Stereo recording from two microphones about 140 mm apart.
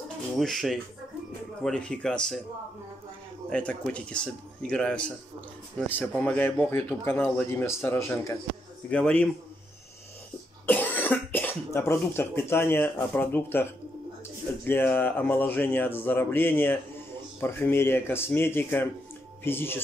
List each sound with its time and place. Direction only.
0.4 s speech: centre (ahead or behind)
3.4 s speech: 5° left (ahead or behind)
10.7 s speech: 15° left (ahead or behind)
14.7 s speech: 15° left (ahead or behind)